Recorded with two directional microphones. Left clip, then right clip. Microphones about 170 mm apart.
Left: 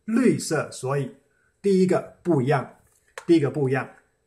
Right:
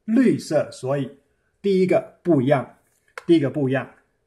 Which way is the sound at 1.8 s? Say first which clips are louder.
Right 3 dB; 40° right (ahead or behind).